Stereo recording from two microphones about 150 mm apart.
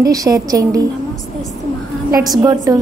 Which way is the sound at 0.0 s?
25° right (ahead or behind).